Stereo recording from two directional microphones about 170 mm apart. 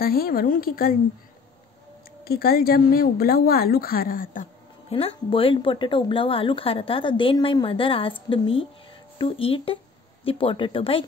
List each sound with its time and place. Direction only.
0.0 s a woman's voice: 60° left (ahead or behind)
2.2 s a woman's voice: 60° left (ahead or behind)
4.8 s speech: 35° left (ahead or behind)